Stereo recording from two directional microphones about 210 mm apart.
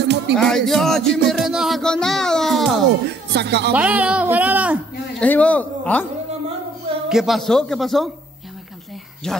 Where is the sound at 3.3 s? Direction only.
55° right (ahead or behind).